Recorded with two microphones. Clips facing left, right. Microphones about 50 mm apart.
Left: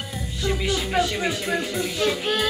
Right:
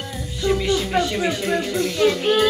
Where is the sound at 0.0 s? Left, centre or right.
Centre.